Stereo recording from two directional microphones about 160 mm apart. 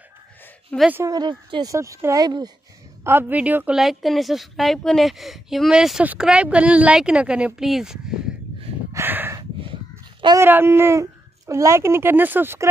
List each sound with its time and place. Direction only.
0.7 s speech: 10° left (ahead or behind)
1.0 s a woman's voice: 25° right (ahead or behind)
3.0 s a woman's voice: 15° right (ahead or behind)
8.9 s a sound: 15° right (ahead or behind)
10.2 s a child's voice: 20° right (ahead or behind)